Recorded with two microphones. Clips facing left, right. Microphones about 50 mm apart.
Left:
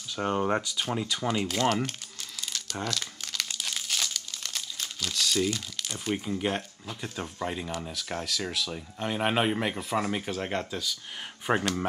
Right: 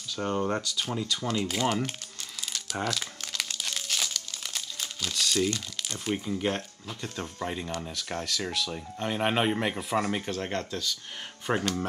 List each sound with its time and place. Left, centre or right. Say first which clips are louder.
0.1 s speech: left 2 dB; centre
1.5 s speech: left 1 dB; centre